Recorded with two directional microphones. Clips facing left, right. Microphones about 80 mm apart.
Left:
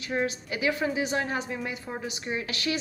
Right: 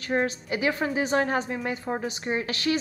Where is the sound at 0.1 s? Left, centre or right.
Right.